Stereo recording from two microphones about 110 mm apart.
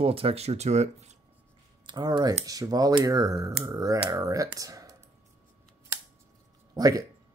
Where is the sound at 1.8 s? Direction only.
40° right (ahead or behind).